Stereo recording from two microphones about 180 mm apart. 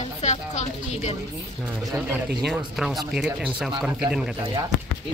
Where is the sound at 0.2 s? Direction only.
40° left (ahead or behind).